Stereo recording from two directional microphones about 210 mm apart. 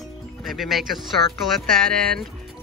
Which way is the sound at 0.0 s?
Centre (ahead or behind).